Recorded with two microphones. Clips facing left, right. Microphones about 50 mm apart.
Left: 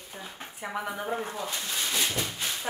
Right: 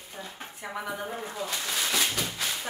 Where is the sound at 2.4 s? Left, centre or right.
Right.